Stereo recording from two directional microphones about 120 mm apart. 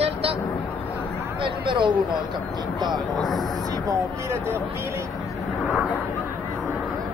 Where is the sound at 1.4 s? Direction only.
40° right (ahead or behind).